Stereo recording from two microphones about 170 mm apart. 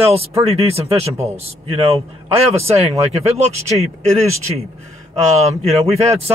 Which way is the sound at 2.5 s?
40° right (ahead or behind).